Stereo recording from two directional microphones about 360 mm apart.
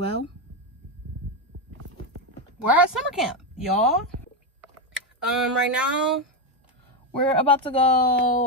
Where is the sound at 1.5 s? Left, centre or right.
Right.